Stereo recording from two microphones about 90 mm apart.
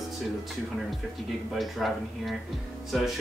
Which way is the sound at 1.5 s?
Centre (ahead or behind).